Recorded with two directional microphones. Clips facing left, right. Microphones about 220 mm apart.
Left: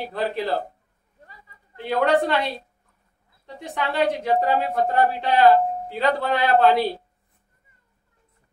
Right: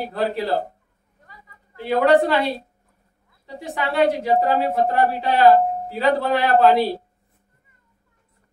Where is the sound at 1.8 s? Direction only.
Centre (ahead or behind).